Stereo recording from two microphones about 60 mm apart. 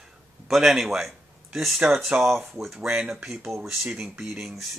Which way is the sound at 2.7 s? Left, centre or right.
Centre.